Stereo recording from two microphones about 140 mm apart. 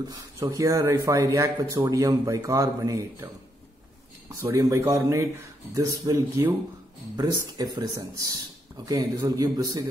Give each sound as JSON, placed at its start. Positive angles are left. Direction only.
{"t": 0.1, "sound": "speech", "side_deg": -25}
{"t": 4.4, "sound": "speech", "side_deg": -20}